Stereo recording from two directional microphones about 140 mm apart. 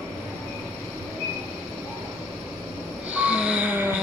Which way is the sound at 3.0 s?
10° right (ahead or behind).